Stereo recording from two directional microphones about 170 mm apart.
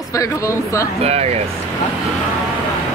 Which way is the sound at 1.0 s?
40° right (ahead or behind).